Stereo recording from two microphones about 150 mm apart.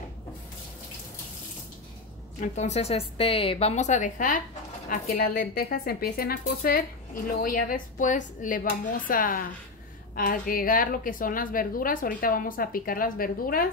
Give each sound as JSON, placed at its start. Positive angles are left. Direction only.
{"t": 2.4, "sound": "a woman's voice", "side_deg": 50}
{"t": 7.2, "sound": "a woman's voice", "side_deg": 60}